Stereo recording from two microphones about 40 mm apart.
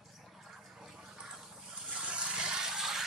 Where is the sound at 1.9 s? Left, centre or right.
Right.